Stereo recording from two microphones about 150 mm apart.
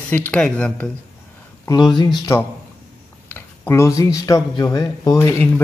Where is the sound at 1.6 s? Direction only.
30° left (ahead or behind).